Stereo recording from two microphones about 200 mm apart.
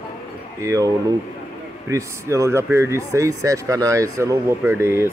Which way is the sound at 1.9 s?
15° right (ahead or behind).